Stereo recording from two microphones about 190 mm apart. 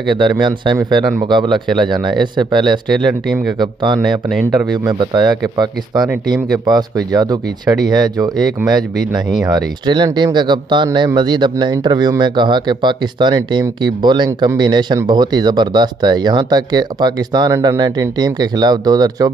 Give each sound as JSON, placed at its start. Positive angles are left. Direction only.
{"t": 0.1, "sound": "speech", "side_deg": -25}